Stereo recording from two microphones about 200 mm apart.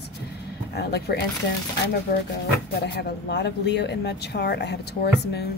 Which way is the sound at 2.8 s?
60° left (ahead or behind).